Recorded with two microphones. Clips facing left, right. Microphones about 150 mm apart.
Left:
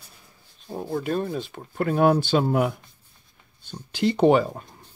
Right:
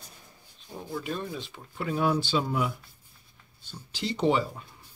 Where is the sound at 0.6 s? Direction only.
45° left (ahead or behind).